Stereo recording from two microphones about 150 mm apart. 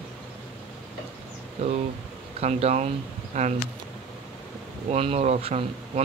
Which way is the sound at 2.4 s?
45° right (ahead or behind).